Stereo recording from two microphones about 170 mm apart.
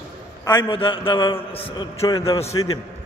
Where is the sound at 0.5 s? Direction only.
30° left (ahead or behind).